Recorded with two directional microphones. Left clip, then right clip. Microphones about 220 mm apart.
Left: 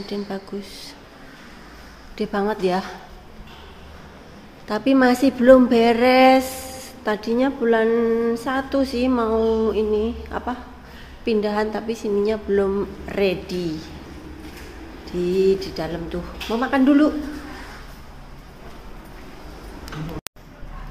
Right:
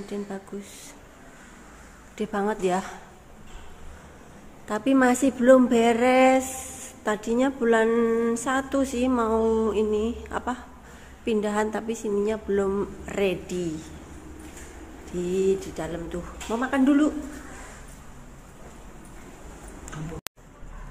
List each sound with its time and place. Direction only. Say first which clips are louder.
0.1 s speech: left 4 dB; 20° left (ahead or behind)
2.1 s speech: left 4 dB; 5° left (ahead or behind)
4.6 s a woman's voice: left 4 dB; 5° left (ahead or behind)
15.2 s speech: left 5 dB; 5° left (ahead or behind)